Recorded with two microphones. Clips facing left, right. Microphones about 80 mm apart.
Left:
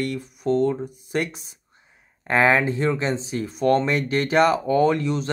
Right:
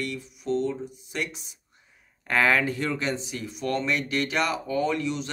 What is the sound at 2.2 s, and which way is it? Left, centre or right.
Speech, left.